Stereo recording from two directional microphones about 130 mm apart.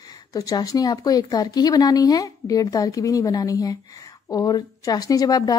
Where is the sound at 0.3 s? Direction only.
30° left (ahead or behind).